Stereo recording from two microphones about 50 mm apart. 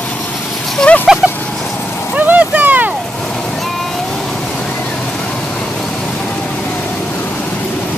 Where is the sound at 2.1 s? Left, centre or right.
Right.